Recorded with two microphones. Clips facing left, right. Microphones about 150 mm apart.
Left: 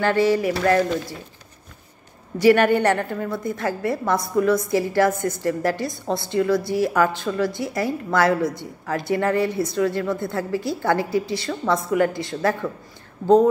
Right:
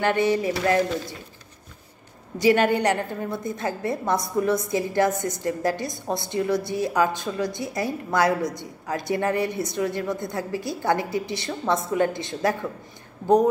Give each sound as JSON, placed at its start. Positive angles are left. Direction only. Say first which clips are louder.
{"t": 0.0, "sound": "a woman's voice", "louder": "left 3 dB", "side_deg": -20}
{"t": 2.3, "sound": "a woman's voice", "louder": "left 4 dB", "side_deg": -20}